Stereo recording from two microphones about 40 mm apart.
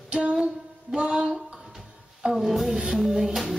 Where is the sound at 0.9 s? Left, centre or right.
Right.